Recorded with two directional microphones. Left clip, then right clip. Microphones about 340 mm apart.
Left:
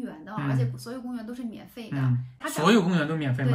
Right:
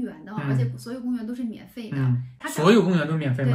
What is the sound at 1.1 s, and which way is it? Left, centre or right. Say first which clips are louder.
A woman's voice: right 6 dB; centre.